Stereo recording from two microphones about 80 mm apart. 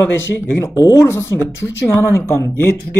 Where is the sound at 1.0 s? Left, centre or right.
Left.